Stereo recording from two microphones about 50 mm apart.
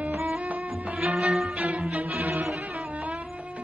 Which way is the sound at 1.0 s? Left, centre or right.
Centre.